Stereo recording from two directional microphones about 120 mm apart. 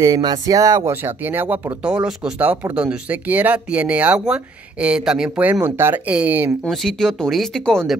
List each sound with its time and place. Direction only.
0.0 s speech: 35° right (ahead or behind); by 6.5 s 15° right (ahead or behind)
6.6 s speech: 5° left (ahead or behind)